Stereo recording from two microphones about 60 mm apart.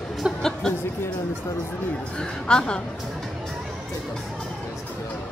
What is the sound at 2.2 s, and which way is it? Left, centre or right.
Speech, centre.